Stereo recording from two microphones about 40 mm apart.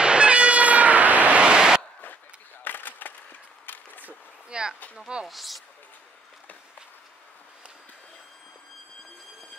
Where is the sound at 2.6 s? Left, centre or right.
Left.